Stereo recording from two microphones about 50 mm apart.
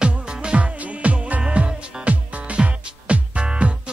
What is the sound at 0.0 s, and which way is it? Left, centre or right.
Music, centre.